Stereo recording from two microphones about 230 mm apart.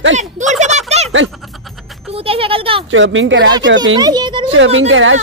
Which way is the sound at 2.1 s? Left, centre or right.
Right.